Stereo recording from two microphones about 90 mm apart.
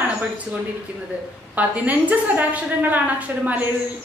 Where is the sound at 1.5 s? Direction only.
15° right (ahead or behind).